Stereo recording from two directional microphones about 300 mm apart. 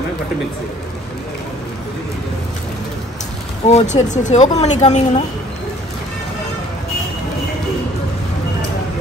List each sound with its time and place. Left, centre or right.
3.6 s speech: left